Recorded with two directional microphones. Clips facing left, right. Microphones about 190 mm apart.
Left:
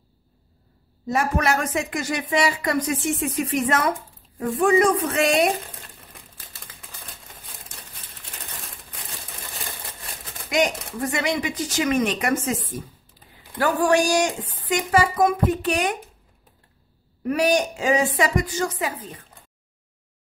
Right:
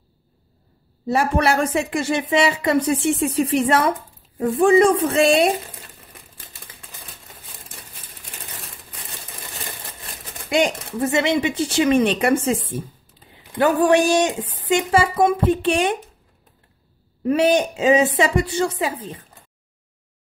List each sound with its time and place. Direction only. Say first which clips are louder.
1.0 s a woman's voice: right 3 dB; 30° right (ahead or behind)
10.5 s a woman's voice: right 3 dB; 30° right (ahead or behind)
17.2 s a woman's voice: right 3 dB; 25° right (ahead or behind)